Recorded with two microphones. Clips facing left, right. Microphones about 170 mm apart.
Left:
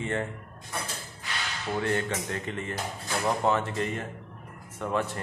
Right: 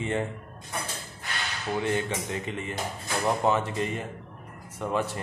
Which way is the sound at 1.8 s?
10° right (ahead or behind).